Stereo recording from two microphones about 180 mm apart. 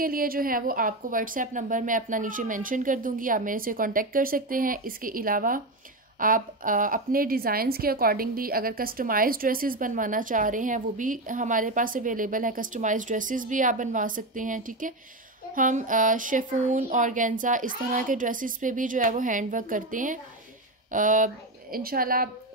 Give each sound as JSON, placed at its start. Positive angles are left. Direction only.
{"t": 0.0, "sound": "a woman's voice", "side_deg": -55}